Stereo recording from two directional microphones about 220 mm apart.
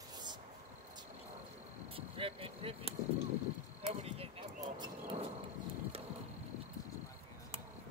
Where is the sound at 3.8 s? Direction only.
25° right (ahead or behind).